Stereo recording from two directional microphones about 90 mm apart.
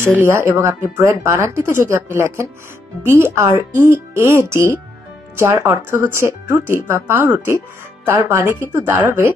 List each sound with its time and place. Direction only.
0.2 s speech: 30° right (ahead or behind)